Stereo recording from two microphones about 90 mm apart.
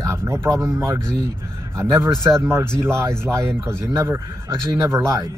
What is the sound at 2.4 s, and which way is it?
Speech, 30° right (ahead or behind).